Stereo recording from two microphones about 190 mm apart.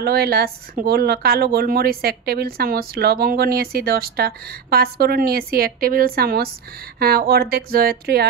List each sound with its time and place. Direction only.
0.0 s a woman's voice: 55° right (ahead or behind)